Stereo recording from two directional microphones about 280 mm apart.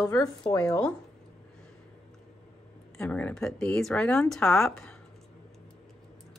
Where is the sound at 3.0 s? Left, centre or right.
Centre.